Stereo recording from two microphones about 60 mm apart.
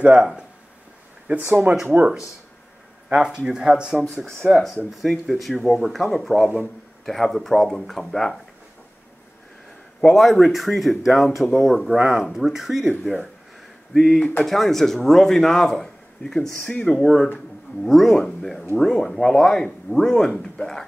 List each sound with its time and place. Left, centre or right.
0.0 s speech: centre
1.2 s speech: right
3.2 s speech: centre
5.0 s speech: centre
10.0 s speech: centre
13.9 s speech: centre
16.6 s speech: centre
16.9 s speech: centre